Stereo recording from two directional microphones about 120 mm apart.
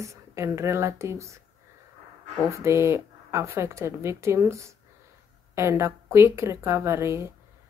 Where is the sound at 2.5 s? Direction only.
25° right (ahead or behind).